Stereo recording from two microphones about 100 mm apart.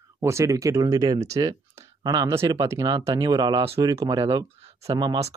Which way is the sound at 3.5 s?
70° right (ahead or behind).